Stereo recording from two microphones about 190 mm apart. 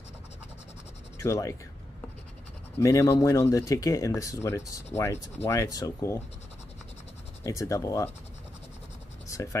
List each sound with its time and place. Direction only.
1.1 s speech: 15° left (ahead or behind)
2.8 s speech: 15° left (ahead or behind)
7.4 s speech: 15° left (ahead or behind)
9.3 s speech: 15° left (ahead or behind)